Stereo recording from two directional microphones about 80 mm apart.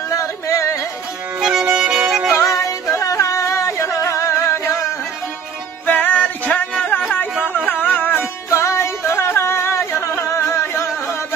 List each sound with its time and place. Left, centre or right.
0.1 s music: left
1.4 s music: centre
2.6 s music: left
5.9 s music: left
7.6 s a sound: left
8.5 s music: left